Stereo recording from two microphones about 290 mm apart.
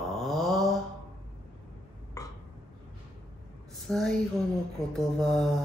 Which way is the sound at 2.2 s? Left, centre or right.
Centre.